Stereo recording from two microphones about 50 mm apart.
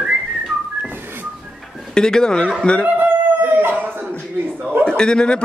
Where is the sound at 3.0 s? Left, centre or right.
Right.